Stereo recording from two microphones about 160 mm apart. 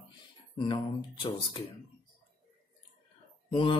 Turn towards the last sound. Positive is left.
turn(degrees=30)  # may be behind; listen again after turning